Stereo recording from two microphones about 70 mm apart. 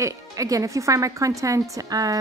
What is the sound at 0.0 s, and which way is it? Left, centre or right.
Speech, right.